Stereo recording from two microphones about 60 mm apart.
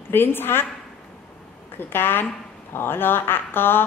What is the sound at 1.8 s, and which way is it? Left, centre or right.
Speech, left.